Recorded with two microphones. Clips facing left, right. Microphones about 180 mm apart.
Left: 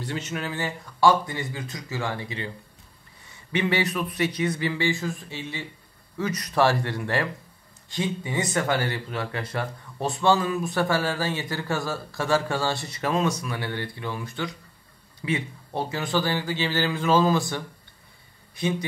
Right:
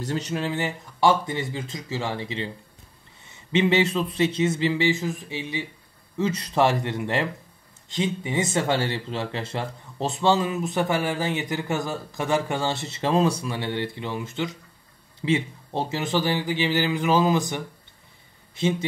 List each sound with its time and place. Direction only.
0.0 s speech: 40° right (ahead or behind)
0.5 s speech: 20° right (ahead or behind)